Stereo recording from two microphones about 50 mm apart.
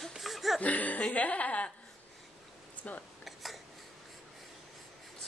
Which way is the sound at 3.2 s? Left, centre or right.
Centre.